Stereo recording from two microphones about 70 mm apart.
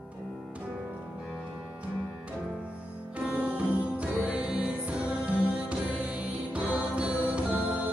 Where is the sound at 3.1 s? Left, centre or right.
Centre.